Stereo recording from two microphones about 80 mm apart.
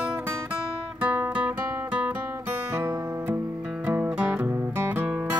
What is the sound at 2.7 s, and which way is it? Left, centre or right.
Guitar, right.